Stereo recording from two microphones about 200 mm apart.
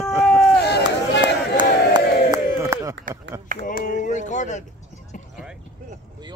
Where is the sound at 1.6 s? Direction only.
20° right (ahead or behind).